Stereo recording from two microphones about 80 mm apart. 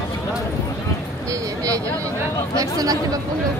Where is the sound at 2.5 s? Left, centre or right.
Right.